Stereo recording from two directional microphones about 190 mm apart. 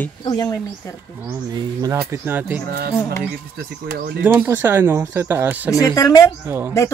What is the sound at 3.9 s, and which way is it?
Speech, 50° right (ahead or behind).